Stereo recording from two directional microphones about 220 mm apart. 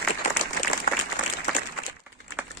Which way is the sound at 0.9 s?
40° left (ahead or behind).